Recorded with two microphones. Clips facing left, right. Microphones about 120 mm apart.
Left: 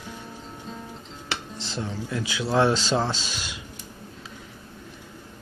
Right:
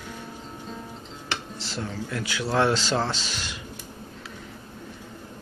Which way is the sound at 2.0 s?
15° left (ahead or behind).